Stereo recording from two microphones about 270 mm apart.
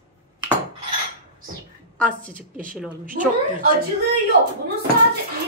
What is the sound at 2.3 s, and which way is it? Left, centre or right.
Speech, right.